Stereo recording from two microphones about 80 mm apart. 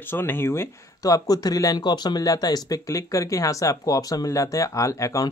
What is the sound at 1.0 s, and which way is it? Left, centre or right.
Speech, left.